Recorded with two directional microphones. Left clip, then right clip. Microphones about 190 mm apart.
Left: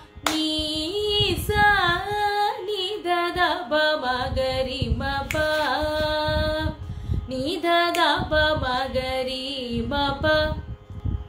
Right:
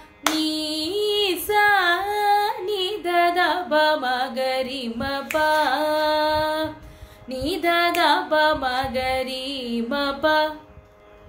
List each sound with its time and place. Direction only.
0.5 s female singing: 20° right (ahead or behind)
4.9 s carnatic music: 20° right (ahead or behind)
7.2 s music: 20° right (ahead or behind)
8.0 s carnatic music: 20° right (ahead or behind)